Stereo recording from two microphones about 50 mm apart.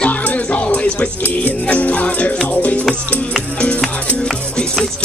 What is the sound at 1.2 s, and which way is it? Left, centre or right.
Cutlery, left.